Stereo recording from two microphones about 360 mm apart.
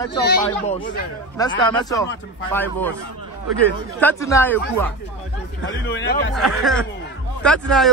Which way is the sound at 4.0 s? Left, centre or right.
Centre.